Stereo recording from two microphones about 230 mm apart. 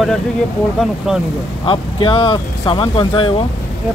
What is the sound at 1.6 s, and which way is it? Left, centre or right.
Speech, left.